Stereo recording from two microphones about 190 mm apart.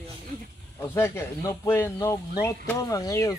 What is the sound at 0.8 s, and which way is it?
Speech, 15° left (ahead or behind).